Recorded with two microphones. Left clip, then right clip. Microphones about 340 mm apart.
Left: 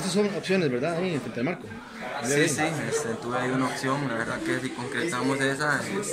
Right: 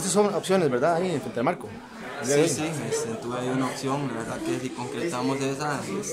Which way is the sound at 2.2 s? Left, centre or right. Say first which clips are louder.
Right 1 dB; centre.